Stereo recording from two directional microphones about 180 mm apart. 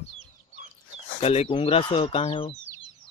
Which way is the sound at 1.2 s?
35° left (ahead or behind).